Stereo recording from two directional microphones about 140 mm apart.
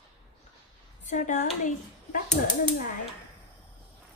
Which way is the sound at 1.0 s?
65° left (ahead or behind).